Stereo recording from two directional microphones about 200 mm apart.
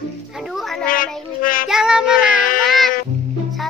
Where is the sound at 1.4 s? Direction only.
45° left (ahead or behind).